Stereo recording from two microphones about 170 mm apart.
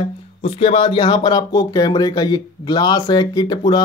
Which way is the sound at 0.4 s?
35° left (ahead or behind).